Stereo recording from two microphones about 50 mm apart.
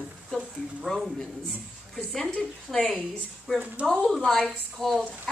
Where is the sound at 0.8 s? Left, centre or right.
Centre.